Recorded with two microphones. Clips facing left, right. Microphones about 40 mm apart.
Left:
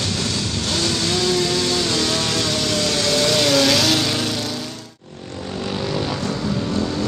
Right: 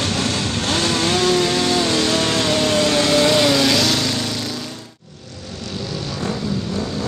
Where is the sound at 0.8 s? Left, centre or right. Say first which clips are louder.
Right 3 dB; right; by 4.0 s centre.